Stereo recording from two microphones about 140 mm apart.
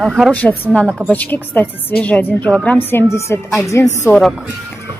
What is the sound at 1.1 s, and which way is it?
A woman's voice, 10° left (ahead or behind).